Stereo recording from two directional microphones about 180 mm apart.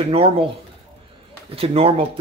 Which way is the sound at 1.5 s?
35° right (ahead or behind).